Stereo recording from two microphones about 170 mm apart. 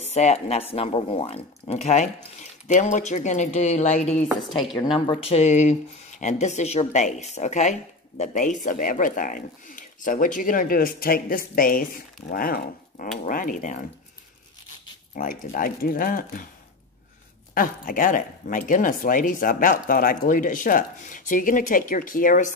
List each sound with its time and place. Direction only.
0.0 s speech: 40° left (ahead or behind)
4.8 s speech: 30° left (ahead or behind); by 13.7 s 50° left (ahead or behind)
15.1 s speech: 55° left (ahead or behind)
17.6 s speech: 55° left (ahead or behind)